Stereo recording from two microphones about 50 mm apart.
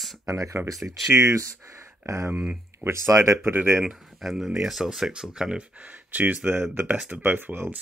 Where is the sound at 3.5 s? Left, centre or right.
Right.